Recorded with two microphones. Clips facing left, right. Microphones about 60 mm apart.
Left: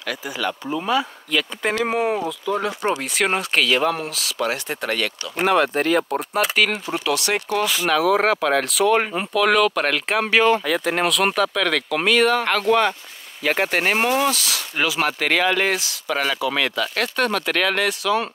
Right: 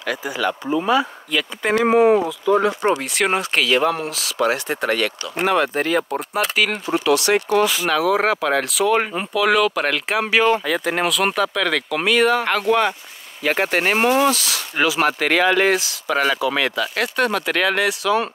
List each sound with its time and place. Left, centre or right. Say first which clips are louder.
0.0 s speech: right 3 dB; centre
5.4 s speech: even; centre
6.9 s speech: right 5 dB; centre
7.9 s speech: left 3 dB; centre